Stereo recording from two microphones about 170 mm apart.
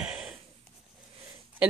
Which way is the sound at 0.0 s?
5° right (ahead or behind).